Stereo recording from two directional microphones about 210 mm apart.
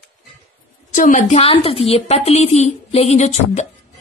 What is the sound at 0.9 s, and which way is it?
A woman's voice, 40° left (ahead or behind).